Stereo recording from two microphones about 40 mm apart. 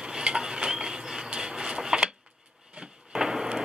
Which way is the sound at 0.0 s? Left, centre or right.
Right.